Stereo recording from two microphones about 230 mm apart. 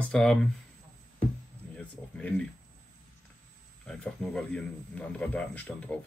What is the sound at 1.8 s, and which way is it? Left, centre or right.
Speech, centre.